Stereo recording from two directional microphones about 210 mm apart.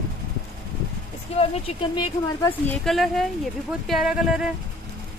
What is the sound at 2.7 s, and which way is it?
Speech, centre (ahead or behind).